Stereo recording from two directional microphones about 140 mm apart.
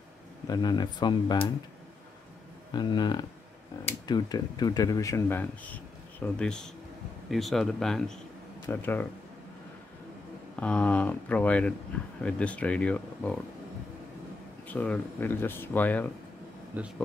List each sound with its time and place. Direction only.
0.5 s speech: 30° left (ahead or behind)
2.7 s speech: 30° left (ahead or behind); by 8.2 s 5° left (ahead or behind)
8.6 s speech: 15° left (ahead or behind)
10.5 s speech: 10° left (ahead or behind)
14.7 s speech: 10° left (ahead or behind)
16.7 s speech: 10° right (ahead or behind)